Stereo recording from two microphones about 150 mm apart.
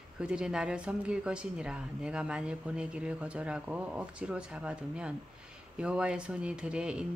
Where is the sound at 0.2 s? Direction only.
5° right (ahead or behind).